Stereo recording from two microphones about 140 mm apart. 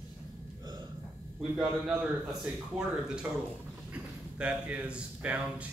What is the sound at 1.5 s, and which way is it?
A man's voice, 5° right (ahead or behind).